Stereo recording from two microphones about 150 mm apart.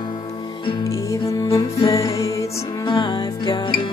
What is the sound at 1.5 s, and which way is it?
Music, 30° left (ahead or behind).